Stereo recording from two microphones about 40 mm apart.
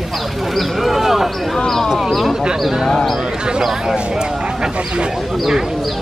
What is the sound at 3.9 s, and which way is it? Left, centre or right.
Speech, right.